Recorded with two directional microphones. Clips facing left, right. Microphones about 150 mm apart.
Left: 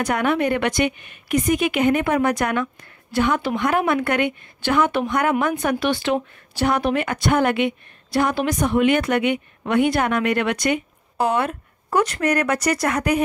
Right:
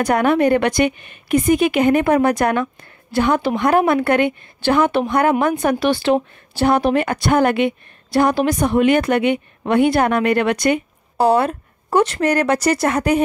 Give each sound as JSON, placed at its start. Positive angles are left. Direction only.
{"t": 0.0, "sound": "a woman's voice", "side_deg": -40}